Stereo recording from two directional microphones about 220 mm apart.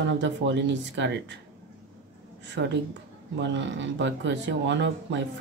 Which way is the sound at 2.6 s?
50° right (ahead or behind).